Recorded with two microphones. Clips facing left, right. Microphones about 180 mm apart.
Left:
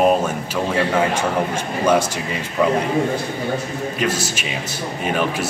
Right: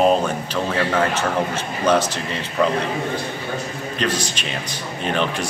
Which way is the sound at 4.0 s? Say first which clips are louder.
Even; 10° left (ahead or behind).